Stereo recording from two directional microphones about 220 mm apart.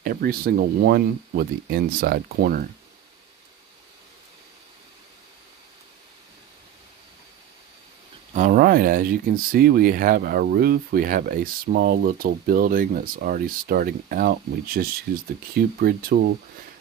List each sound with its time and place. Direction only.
0.0 s speech: 45° right (ahead or behind)
8.3 s speech: 35° right (ahead or behind)